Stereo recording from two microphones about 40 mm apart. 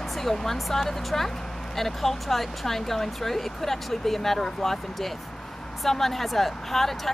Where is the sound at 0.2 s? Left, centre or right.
Centre.